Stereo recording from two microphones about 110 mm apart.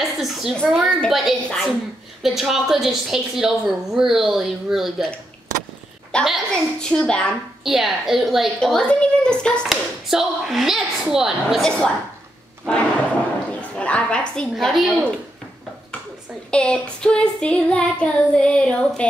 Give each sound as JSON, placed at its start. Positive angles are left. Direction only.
{"t": 0.2, "sound": "a sound", "side_deg": -5}
{"t": 0.7, "sound": "a woman's voice", "side_deg": 5}
{"t": 6.2, "sound": "female singing", "side_deg": 0}
{"t": 7.6, "sound": "a woman's voice", "side_deg": 0}
{"t": 12.7, "sound": "female singing", "side_deg": 10}
{"t": 13.5, "sound": "a woman's voice", "side_deg": 10}
{"t": 16.4, "sound": "female singing", "side_deg": 10}